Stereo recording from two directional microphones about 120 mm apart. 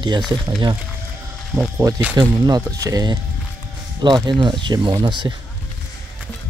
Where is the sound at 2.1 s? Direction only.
35° right (ahead or behind).